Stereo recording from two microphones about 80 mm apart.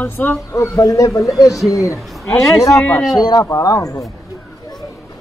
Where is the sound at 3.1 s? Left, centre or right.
Left.